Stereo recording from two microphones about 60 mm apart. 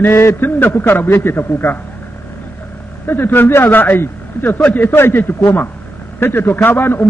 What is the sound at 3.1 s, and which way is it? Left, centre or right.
A man's voice, left.